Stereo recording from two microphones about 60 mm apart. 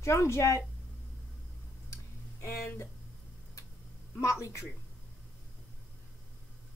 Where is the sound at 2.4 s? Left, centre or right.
Left.